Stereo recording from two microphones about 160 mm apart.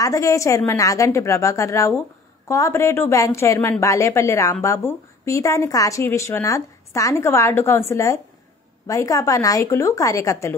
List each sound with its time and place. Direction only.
0.0 s a woman's voice: 20° left (ahead or behind)